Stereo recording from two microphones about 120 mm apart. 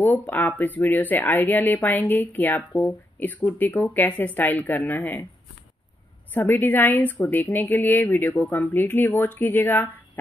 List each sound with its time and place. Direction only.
0.0 s a woman's voice: 15° left (ahead or behind)
6.3 s a woman's voice: 15° left (ahead or behind)